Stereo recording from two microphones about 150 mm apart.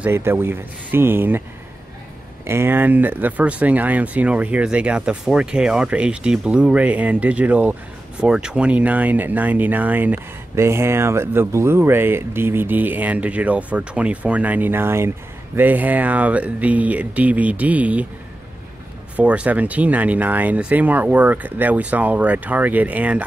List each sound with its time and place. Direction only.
0.0 s speech: 15° right (ahead or behind)
2.4 s speech: 15° right (ahead or behind)
19.1 s speech: 10° right (ahead or behind)